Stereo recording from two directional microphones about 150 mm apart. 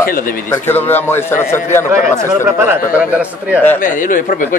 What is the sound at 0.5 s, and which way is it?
Speech, 15° left (ahead or behind).